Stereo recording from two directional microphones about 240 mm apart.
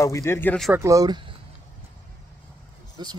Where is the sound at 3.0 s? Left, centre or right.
Centre.